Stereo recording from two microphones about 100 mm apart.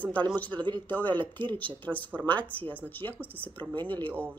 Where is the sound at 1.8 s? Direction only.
15° left (ahead or behind).